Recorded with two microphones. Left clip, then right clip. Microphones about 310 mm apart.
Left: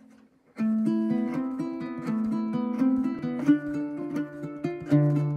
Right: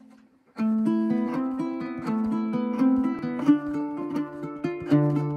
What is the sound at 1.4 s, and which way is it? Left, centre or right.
Music, centre.